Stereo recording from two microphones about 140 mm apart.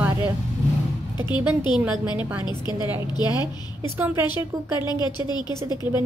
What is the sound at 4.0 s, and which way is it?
Speech, 15° right (ahead or behind).